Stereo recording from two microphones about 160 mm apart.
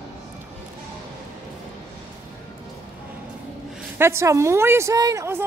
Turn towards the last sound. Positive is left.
turn(degrees=-15)  # may be behind; listen again after turning